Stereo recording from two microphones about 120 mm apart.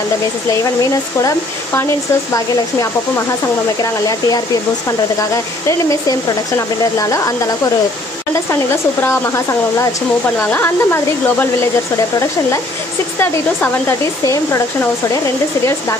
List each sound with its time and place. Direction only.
3.8 s speech: 30° left (ahead or behind)
9.0 s speech: 20° left (ahead or behind)
13.2 s speech: 20° left (ahead or behind)